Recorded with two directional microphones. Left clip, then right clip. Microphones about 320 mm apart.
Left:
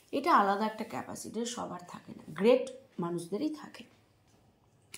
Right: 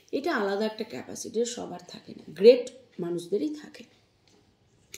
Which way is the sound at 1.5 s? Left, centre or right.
Left.